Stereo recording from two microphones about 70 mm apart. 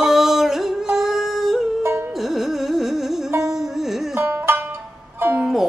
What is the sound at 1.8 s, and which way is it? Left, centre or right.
Music, right.